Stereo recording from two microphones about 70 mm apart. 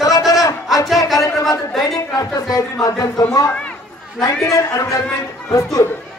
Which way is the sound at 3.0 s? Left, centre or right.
Left.